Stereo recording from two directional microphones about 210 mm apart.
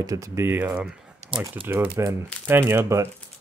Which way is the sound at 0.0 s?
15° right (ahead or behind).